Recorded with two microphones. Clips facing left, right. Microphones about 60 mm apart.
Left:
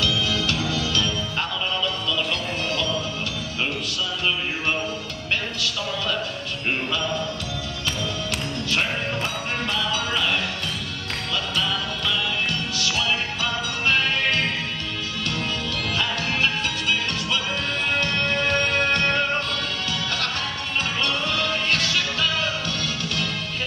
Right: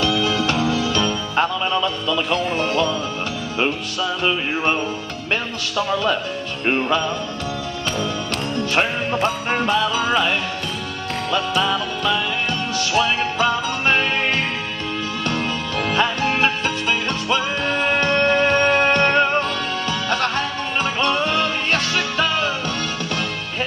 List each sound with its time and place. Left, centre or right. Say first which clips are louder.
0.0 s music: right 5 dB; right
4.2 s music: right 5 dB; right
6.6 s music: right 7 dB; right
8.5 s music: right 6 dB; right
11.3 s music: right 6 dB; right
15.9 s music: right 7 dB; right
17.8 s music: right 7 dB; right